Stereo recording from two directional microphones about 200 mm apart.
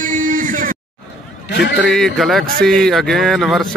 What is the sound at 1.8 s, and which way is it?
Speech, centre (ahead or behind).